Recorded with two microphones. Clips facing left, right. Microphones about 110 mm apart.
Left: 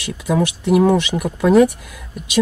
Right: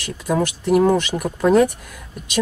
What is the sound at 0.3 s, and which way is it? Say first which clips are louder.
Speech: left 1 dB; 5° left (ahead or behind).